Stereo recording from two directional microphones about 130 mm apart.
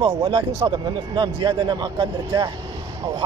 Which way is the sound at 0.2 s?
40° right (ahead or behind).